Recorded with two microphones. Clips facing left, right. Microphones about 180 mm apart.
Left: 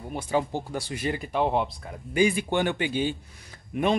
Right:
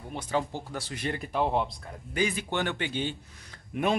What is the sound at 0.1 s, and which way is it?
Speech, 10° left (ahead or behind).